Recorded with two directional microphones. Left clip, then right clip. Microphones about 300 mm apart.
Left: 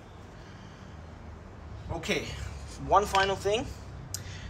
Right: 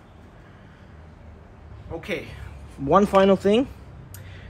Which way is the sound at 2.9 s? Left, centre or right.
Right.